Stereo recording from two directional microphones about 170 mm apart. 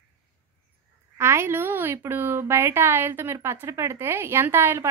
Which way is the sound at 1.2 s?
15° right (ahead or behind).